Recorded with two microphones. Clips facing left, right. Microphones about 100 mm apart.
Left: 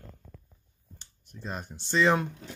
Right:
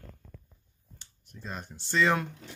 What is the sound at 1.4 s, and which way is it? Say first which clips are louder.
Speech: left 3 dB; 20° left (ahead or behind).